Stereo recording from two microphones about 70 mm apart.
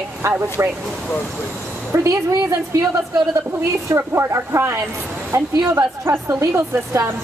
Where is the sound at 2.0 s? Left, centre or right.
Right.